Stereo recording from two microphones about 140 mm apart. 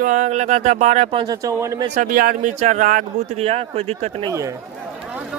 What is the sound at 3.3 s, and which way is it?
Speech, 45° right (ahead or behind).